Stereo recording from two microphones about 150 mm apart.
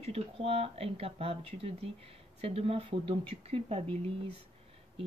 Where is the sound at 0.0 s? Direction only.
40° right (ahead or behind).